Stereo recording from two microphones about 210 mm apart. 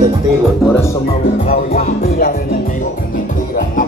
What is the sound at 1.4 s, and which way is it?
Music, 45° left (ahead or behind).